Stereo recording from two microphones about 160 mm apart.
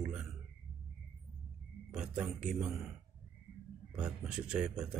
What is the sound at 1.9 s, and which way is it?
Speech, 5° right (ahead or behind).